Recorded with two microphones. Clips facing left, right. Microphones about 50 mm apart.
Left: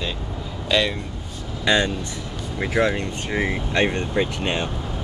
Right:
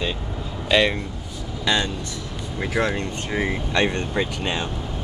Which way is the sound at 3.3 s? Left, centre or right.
Centre.